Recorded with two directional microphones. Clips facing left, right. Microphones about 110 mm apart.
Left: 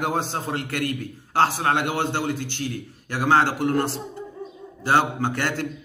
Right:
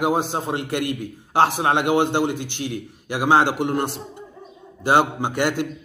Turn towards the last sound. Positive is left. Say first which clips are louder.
# right 3 dB
turn(degrees=-15)  # may be behind; listen again after turning